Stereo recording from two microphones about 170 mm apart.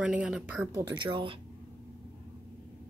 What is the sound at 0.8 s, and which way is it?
Speech, 20° right (ahead or behind).